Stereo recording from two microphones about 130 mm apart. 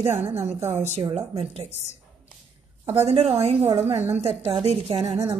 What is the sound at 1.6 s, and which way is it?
Speech, 60° left (ahead or behind).